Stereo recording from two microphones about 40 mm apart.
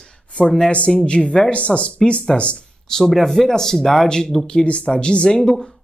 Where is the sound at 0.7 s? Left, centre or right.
Left.